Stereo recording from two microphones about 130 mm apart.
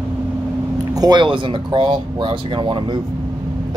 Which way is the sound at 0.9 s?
30° right (ahead or behind).